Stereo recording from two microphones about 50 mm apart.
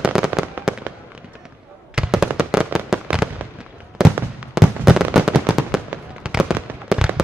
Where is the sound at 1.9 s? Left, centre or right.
Centre.